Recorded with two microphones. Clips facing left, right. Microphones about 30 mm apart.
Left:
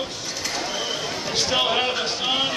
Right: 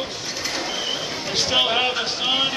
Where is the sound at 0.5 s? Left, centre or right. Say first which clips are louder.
Right 1 dB; centre.